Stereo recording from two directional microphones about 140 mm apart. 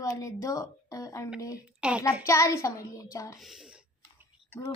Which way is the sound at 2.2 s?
20° left (ahead or behind).